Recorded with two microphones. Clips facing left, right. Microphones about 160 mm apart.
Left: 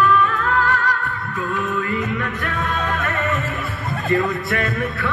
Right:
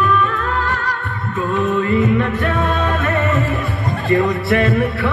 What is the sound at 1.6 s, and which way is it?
Music, 25° right (ahead or behind).